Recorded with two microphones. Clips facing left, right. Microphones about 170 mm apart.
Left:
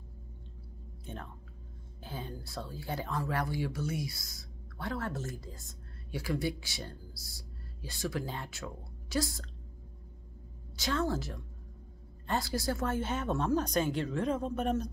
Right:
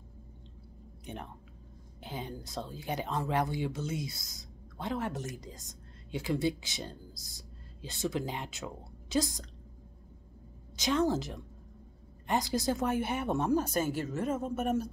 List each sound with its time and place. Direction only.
1.0 s speech: 15° right (ahead or behind)
10.8 s speech: 20° right (ahead or behind)